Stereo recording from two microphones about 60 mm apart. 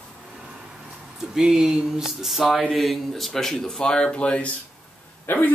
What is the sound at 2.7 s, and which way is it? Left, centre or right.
Speech, centre.